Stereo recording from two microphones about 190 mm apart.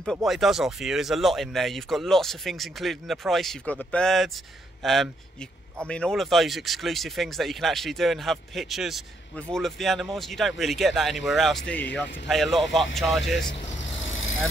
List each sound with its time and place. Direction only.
0.0 s speech: centre (ahead or behind)
13.9 s vehicle: 90° left